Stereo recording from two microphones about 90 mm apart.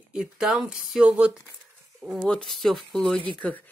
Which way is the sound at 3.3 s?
15° left (ahead or behind).